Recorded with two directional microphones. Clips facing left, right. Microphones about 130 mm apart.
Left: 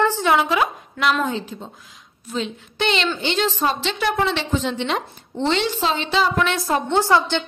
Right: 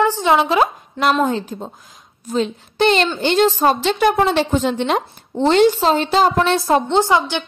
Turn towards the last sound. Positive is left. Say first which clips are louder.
# right 2 dB
turn(degrees=-15)  # may be behind; listen again after turning